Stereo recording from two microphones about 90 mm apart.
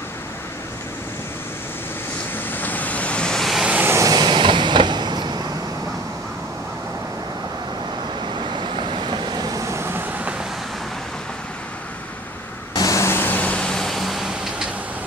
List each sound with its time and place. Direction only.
2.3 s vehicle: 20° left (ahead or behind); by 3.6 s 5° left (ahead or behind)
3.6 s vehicle: 20° right (ahead or behind)
3.9 s vehicle: 40° right (ahead or behind)
8.5 s vehicle: 65° right (ahead or behind); by 10.0 s 30° right (ahead or behind)
12.7 s vehicle: 40° left (ahead or behind); by 14.7 s 5° right (ahead or behind)